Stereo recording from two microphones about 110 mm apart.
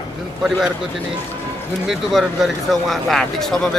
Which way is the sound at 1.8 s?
Centre (ahead or behind).